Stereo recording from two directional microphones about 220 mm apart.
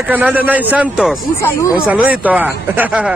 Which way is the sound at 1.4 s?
15° left (ahead or behind).